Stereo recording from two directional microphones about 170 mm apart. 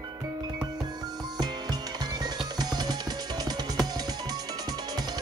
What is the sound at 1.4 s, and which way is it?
Music, 25° right (ahead or behind).